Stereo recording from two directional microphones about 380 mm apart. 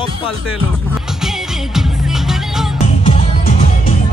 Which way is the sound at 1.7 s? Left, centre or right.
Centre.